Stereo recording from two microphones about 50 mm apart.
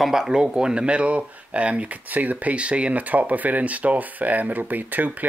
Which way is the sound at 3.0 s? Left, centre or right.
Right.